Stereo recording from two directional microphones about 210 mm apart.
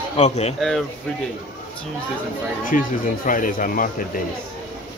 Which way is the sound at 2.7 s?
40° left (ahead or behind).